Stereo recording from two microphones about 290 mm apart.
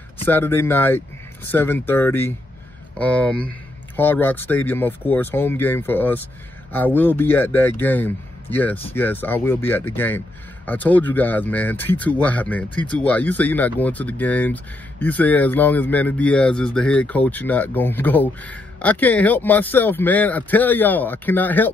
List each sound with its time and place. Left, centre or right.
0.2 s speech: centre